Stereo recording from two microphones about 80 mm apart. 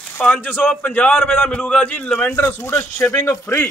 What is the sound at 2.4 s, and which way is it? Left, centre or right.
Speech, left.